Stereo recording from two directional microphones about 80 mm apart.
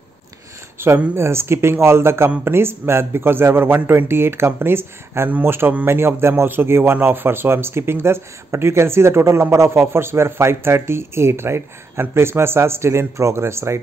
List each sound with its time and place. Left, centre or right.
0.7 s a man's voice: right